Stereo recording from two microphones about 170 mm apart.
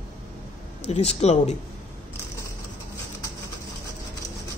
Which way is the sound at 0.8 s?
40° left (ahead or behind).